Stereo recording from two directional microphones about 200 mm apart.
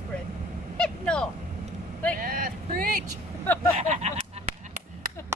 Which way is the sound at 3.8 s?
35° right (ahead or behind).